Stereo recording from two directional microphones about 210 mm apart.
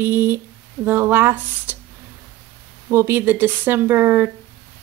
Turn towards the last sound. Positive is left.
turn(degrees=-10)  # may be behind; listen again after turning